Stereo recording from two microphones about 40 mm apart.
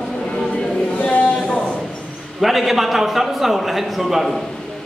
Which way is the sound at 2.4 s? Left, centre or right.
Centre.